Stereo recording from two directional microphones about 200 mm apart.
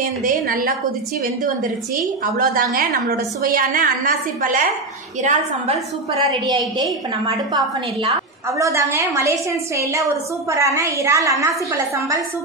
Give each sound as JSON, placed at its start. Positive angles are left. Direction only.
{"t": 0.2, "sound": "a woman's voice", "side_deg": -45}
{"t": 2.3, "sound": "a woman's voice", "side_deg": -45}
{"t": 5.2, "sound": "a woman's voice", "side_deg": -30}